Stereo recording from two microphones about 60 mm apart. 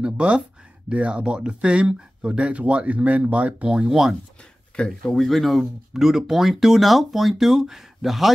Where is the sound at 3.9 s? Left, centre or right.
Centre.